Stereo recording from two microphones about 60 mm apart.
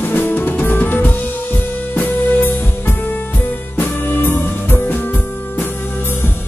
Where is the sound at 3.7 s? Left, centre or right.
Left.